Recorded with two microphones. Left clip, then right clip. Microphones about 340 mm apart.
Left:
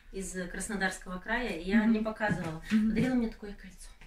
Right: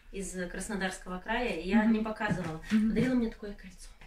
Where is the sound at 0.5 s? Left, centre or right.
Centre.